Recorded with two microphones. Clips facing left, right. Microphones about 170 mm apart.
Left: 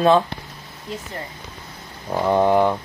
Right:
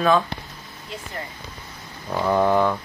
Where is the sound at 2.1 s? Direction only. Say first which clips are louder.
Left 2 dB; 20° left (ahead or behind).